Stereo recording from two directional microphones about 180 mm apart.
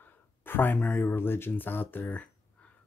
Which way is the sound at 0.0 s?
10° left (ahead or behind).